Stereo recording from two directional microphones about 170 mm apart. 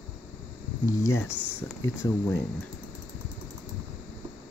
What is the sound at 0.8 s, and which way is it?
Speech, 20° left (ahead or behind).